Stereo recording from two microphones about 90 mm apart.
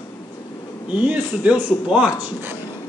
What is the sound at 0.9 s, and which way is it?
Speech, 15° right (ahead or behind).